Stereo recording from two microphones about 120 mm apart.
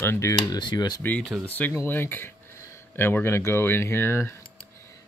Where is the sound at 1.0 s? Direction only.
15° left (ahead or behind).